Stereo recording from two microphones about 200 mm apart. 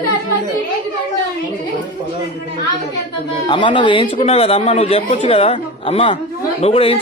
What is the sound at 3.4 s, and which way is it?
Speech, 25° left (ahead or behind).